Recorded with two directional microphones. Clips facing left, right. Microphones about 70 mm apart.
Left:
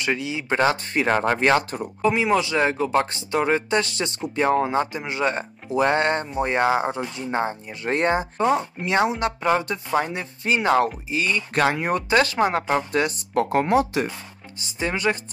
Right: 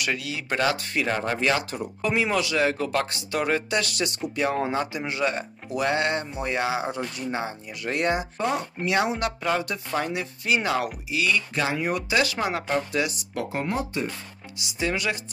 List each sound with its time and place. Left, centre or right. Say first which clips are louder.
0.0 s speech: left 4 dB; left
2.0 s speech: left 4 dB; centre; by 13.8 s left
14.8 s speech: left 3 dB; left